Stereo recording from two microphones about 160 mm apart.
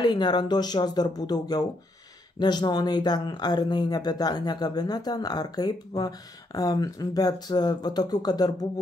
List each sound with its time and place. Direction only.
0.0 s speech: 25° left (ahead or behind)